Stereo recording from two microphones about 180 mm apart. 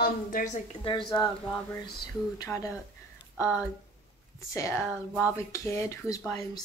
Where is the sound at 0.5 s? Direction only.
25° left (ahead or behind).